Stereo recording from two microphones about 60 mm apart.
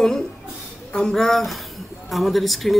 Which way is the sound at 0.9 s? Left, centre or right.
Centre.